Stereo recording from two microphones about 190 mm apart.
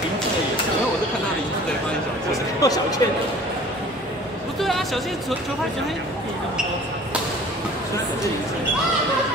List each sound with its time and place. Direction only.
2.3 s music: 20° left (ahead or behind)
4.6 s speech: centre (ahead or behind)